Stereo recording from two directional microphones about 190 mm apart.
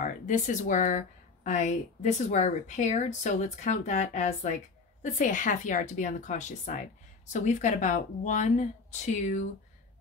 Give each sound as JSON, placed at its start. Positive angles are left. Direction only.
{"t": 0.0, "sound": "speech", "side_deg": 40}